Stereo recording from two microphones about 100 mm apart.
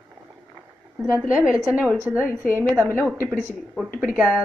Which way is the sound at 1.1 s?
10° right (ahead or behind).